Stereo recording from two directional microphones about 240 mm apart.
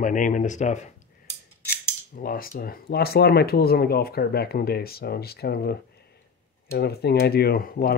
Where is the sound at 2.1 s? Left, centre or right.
Left.